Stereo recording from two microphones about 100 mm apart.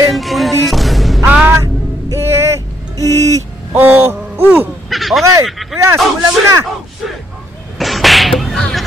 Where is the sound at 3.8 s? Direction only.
20° right (ahead or behind).